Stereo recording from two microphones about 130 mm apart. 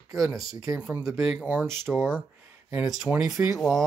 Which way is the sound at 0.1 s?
25° right (ahead or behind).